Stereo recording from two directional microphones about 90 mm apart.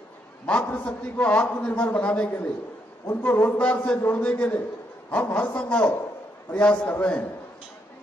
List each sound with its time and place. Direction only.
0.5 s a man's voice: 15° left (ahead or behind)